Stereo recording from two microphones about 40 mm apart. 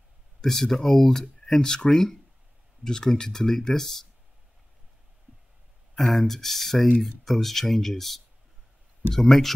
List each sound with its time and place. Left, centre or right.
0.4 s speech: centre
5.9 s speech: centre